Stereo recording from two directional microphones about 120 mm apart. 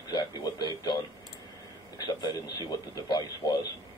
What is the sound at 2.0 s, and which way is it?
Speech, 35° left (ahead or behind).